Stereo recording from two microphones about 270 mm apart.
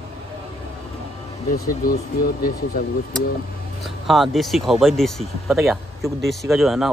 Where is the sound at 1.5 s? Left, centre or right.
Left.